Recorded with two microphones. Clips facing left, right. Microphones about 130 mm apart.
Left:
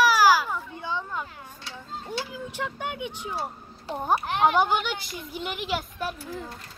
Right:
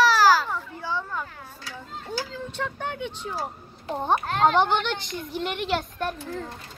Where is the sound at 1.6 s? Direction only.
25° left (ahead or behind).